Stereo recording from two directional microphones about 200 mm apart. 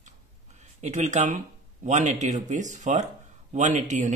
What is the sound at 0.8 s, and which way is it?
Speech, 35° right (ahead or behind).